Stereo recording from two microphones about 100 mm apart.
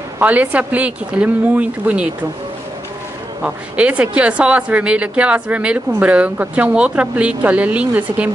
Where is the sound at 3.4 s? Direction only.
10° right (ahead or behind).